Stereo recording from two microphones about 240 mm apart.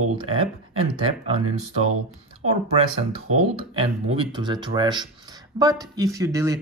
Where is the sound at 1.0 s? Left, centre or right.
Right.